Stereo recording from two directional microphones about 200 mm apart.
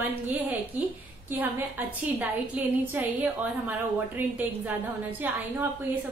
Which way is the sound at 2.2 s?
10° right (ahead or behind).